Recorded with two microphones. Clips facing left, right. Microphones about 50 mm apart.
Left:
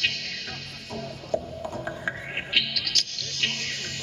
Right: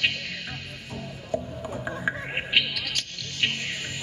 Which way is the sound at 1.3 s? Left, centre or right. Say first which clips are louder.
Left 1 dB; centre.